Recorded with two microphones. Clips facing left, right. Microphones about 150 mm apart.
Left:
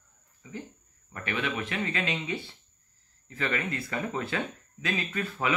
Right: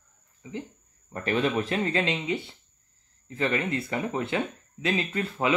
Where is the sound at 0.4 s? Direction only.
20° right (ahead or behind).